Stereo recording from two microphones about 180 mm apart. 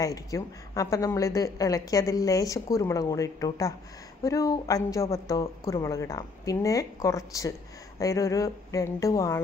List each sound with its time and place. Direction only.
0.0 s a woman's voice: 20° left (ahead or behind)